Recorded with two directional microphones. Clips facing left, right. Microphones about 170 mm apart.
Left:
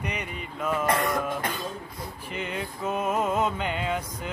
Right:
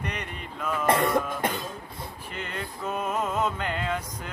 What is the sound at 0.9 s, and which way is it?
Cough, 25° right (ahead or behind).